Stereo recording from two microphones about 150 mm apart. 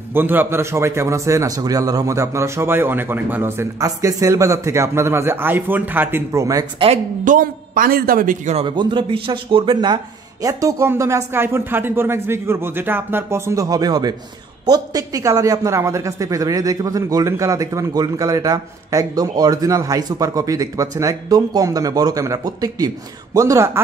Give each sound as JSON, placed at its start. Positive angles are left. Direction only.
{"t": 0.1, "sound": "a man's voice", "side_deg": -15}
{"t": 6.8, "sound": "speech", "side_deg": -35}
{"t": 7.2, "sound": "a man's voice", "side_deg": -65}
{"t": 8.5, "sound": "speech", "side_deg": -30}
{"t": 10.4, "sound": "a man's voice", "side_deg": -20}